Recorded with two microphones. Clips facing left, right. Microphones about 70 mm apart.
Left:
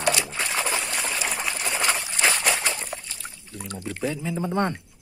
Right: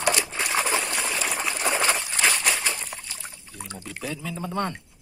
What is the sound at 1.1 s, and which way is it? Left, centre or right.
Water, centre.